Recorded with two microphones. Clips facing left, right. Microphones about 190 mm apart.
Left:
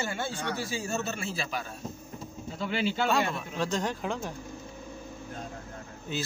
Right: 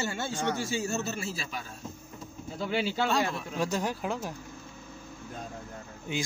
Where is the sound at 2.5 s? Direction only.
5° right (ahead or behind).